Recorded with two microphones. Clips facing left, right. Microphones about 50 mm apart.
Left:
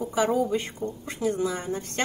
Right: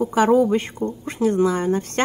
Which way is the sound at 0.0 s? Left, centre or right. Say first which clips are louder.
Right 8 dB; right.